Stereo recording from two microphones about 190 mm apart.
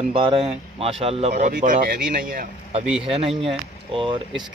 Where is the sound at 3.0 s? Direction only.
30° right (ahead or behind).